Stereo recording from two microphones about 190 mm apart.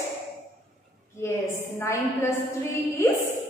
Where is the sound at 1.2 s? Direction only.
15° left (ahead or behind).